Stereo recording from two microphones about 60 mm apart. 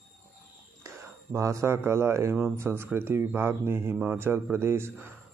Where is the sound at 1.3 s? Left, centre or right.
Right.